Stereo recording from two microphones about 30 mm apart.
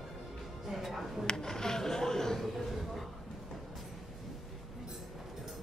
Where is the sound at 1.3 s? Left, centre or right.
Centre.